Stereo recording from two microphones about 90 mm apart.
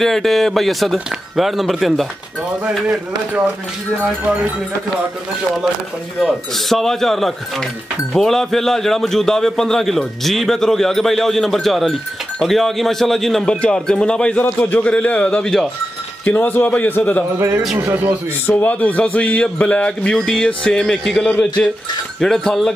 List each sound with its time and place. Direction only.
0.0 s a man's voice: 5° left (ahead or behind)
6.1 s a man's voice: 5° left (ahead or behind)
16.3 s a man's voice: 20° left (ahead or behind)
17.7 s speech: 25° right (ahead or behind)
18.5 s speech: 20° left (ahead or behind)